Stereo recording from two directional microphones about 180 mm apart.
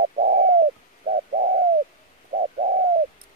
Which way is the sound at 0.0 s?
55° right (ahead or behind).